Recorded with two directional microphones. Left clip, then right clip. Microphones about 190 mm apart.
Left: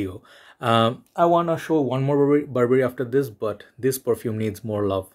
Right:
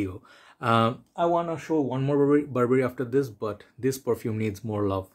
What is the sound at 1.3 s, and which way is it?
Speech, 30° left (ahead or behind).